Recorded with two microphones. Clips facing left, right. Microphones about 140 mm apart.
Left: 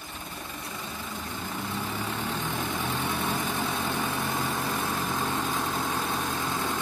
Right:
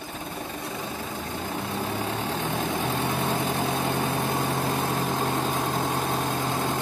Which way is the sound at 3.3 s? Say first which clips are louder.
Right 4 dB; 25° right (ahead or behind).